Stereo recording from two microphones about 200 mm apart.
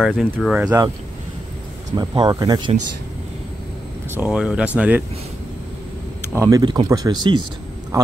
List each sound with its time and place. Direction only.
0.0 s speech: 5° left (ahead or behind)
2.0 s speech: 20° right (ahead or behind)
4.1 s speech: 5° right (ahead or behind)
6.3 s a man's voice: 15° right (ahead or behind)